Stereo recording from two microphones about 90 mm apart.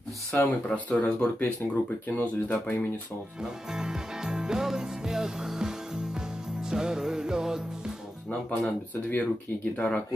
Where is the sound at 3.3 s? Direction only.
5° right (ahead or behind).